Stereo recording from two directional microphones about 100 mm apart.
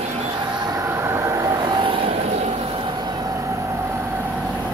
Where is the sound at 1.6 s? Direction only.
45° right (ahead or behind).